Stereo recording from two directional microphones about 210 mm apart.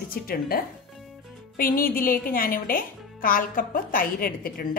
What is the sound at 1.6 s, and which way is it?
Speech, 45° left (ahead or behind).